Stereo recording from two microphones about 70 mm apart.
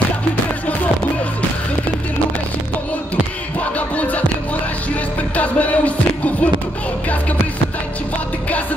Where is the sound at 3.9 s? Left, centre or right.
Left.